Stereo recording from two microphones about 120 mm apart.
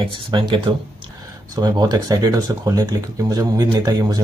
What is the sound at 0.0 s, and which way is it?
Speech, 45° right (ahead or behind).